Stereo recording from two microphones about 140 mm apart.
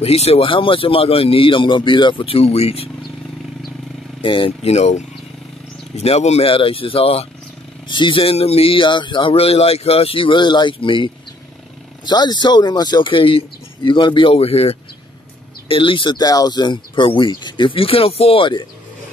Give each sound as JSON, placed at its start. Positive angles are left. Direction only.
{"t": 0.0, "sound": "speech", "side_deg": 45}
{"t": 4.2, "sound": "speech", "side_deg": 40}
{"t": 12.1, "sound": "speech", "side_deg": 30}